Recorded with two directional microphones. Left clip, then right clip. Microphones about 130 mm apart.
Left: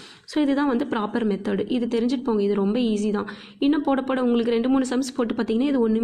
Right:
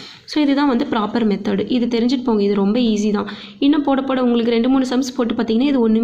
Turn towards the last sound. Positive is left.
turn(degrees=25)  # may be behind; listen again after turning